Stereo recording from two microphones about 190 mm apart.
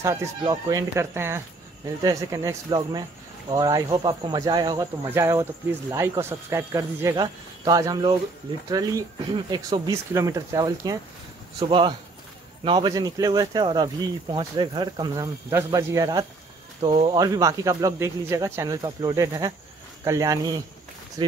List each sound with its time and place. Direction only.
0.0 s speech: 15° right (ahead or behind)